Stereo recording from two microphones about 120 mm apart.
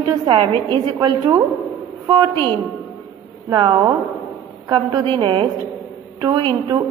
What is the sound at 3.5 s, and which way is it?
A woman's voice, 30° right (ahead or behind).